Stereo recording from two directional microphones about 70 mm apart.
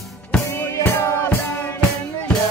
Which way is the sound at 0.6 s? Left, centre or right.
Left.